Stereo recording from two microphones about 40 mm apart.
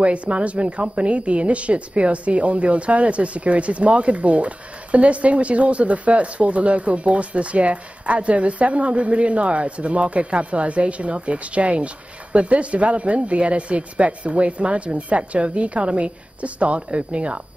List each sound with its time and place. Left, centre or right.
0.0 s a woman's voice: right